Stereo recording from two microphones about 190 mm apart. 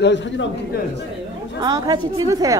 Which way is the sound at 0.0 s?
70° left (ahead or behind).